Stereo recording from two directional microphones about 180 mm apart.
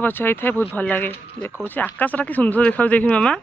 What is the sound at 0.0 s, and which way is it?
Speech, 10° left (ahead or behind).